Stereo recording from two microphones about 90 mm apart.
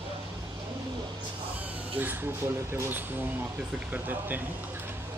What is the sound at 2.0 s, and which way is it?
Speech, 20° right (ahead or behind).